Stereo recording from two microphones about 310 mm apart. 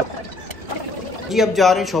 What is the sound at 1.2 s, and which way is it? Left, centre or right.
Speech, centre.